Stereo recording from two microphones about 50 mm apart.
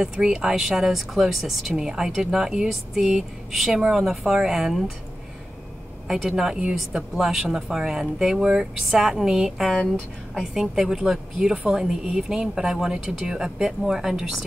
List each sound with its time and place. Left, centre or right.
0.0 s speech: centre
6.0 s a woman's voice: centre
9.8 s speech: centre
10.5 s speech: centre